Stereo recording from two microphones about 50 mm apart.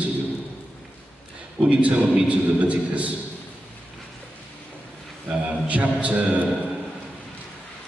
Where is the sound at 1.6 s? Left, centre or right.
Right.